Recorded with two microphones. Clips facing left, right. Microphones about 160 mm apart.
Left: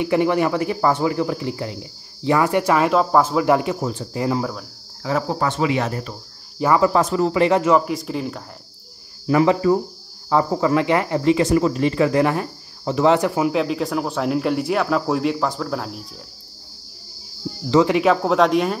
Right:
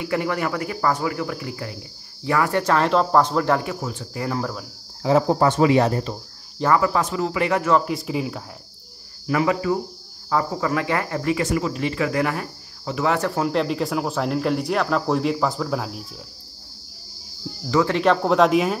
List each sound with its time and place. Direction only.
0.0 s speech: 20° left (ahead or behind)
3.8 s speech: 35° left (ahead or behind)
4.4 s speech: centre (ahead or behind)
5.0 s speech: 25° right (ahead or behind)
5.5 s speech: 40° right (ahead or behind)
6.8 s speech: 35° left (ahead or behind)
7.8 s speech: centre (ahead or behind)
9.3 s speech: 30° left (ahead or behind)
11.5 s speech: 35° left (ahead or behind)
13.3 s speech: 5° left (ahead or behind)
17.6 s speech: 20° left (ahead or behind)
17.9 s speech: 5° left (ahead or behind)